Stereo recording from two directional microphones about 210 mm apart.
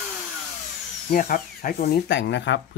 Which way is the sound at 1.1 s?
40° left (ahead or behind).